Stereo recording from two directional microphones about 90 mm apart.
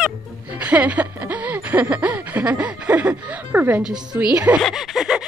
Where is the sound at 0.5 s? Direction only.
15° right (ahead or behind).